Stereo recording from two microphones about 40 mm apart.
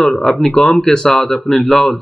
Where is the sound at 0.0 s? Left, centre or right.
Centre.